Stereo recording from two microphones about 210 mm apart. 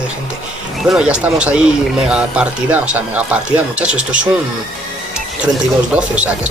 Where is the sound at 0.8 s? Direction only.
5° right (ahead or behind).